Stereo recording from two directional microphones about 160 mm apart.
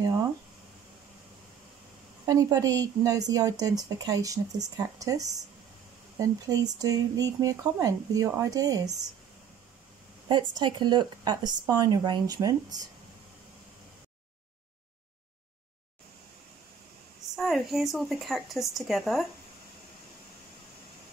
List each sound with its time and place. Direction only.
2.2 s a woman's voice: 20° right (ahead or behind)
10.2 s a woman's voice: 30° right (ahead or behind)
17.4 s a woman's voice: centre (ahead or behind)